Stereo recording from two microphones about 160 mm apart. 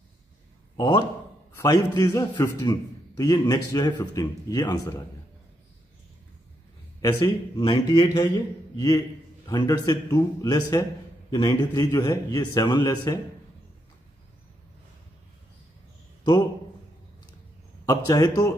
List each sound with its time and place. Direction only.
0.7 s a man's voice: 30° left (ahead or behind)
7.0 s a man's voice: 20° left (ahead or behind)
17.8 s a man's voice: 20° left (ahead or behind)